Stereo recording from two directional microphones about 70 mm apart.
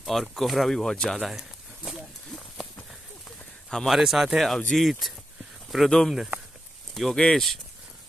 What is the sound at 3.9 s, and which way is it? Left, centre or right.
Speech, centre.